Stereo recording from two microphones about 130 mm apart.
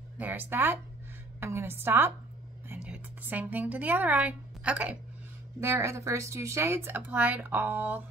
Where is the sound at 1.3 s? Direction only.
20° right (ahead or behind).